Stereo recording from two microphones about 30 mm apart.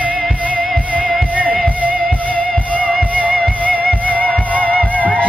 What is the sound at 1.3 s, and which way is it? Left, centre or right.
Music, right.